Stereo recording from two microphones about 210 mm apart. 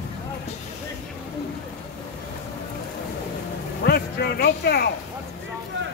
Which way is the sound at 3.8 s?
50° left (ahead or behind).